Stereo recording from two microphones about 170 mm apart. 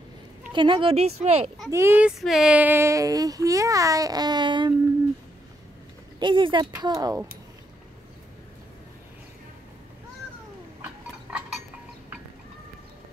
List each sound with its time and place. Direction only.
0.5 s a child's voice: 30° right (ahead or behind)
1.7 s speech: 15° right (ahead or behind)
6.1 s speech: 30° right (ahead or behind)
10.8 s chink: 5° right (ahead or behind)